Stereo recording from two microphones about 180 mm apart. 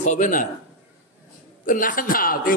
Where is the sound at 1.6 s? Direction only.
50° left (ahead or behind).